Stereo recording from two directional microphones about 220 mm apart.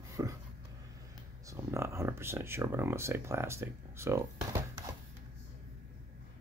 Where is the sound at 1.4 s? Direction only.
15° right (ahead or behind).